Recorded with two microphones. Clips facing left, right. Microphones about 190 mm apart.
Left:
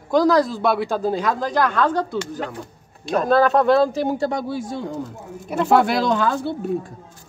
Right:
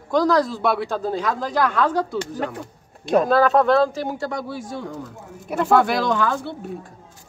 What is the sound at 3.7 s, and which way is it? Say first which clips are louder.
Speech: left 2 dB; 15° left (ahead or behind).